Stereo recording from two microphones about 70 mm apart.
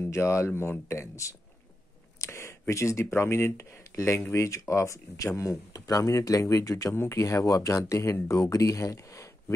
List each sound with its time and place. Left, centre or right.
0.0 s speech: left
2.1 s a sound: left
2.7 s speech: left